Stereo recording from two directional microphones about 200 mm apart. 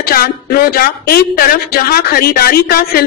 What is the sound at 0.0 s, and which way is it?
Speech, 50° left (ahead or behind).